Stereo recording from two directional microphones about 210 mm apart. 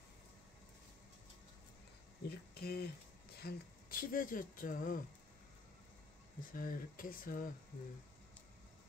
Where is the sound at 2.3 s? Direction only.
50° left (ahead or behind).